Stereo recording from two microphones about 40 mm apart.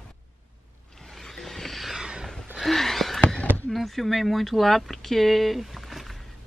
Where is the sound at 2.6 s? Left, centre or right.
Centre.